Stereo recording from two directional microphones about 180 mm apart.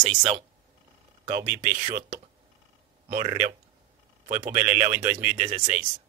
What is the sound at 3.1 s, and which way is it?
Speech, 45° right (ahead or behind).